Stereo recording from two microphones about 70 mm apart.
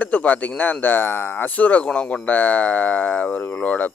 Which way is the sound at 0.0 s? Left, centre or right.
Left.